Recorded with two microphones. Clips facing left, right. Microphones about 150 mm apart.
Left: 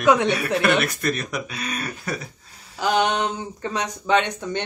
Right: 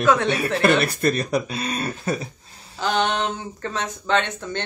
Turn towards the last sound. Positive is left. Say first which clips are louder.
# left 2 dB
turn(degrees=15)  # may be behind; listen again after turning